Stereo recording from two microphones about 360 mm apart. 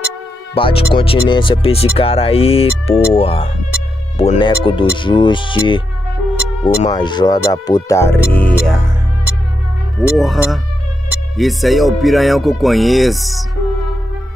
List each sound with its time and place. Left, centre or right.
0.6 s speech: centre
9.9 s speech: centre